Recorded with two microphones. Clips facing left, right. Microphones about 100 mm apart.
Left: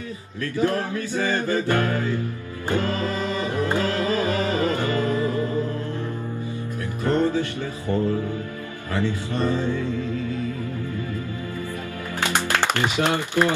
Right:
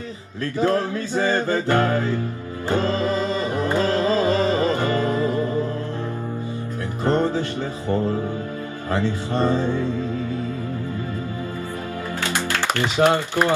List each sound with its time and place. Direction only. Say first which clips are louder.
0.6 s music: right 2 dB; 20° right (ahead or behind)
7.1 s music: right 1 dB; 20° right (ahead or behind)
12.3 s music: left 2 dB; 20° left (ahead or behind)
13.0 s speech: right 5 dB; 15° right (ahead or behind)